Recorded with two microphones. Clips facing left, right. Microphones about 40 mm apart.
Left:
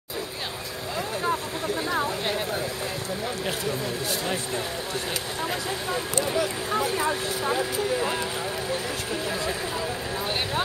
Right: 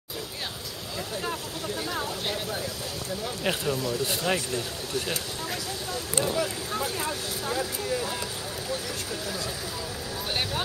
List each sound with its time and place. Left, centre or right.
1.9 s a sound: left
3.7 s speech: left
6.3 s speech: left